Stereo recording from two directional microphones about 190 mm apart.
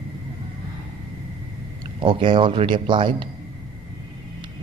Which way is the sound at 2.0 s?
25° right (ahead or behind).